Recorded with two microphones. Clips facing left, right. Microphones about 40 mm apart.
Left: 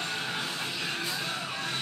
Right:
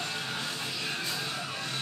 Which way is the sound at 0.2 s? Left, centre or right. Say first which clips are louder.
Left 2 dB; left.